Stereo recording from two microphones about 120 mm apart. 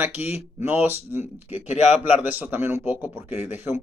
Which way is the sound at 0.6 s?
15° right (ahead or behind).